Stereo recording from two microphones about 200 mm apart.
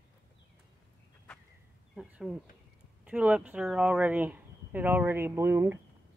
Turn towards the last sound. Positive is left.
turn(degrees=-10)  # may be behind; listen again after turning